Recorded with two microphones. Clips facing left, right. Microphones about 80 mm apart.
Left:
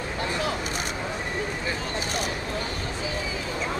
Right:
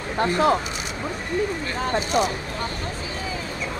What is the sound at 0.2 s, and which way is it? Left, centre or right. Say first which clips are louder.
Speech: right 10 dB; right.